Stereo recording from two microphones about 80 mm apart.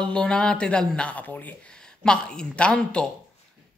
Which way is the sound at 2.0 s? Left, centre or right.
Centre.